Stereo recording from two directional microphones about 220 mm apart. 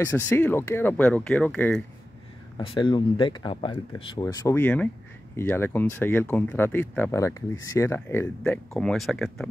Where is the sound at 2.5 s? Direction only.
20° left (ahead or behind).